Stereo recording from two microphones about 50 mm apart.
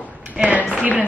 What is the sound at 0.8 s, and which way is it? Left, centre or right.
Speech, right.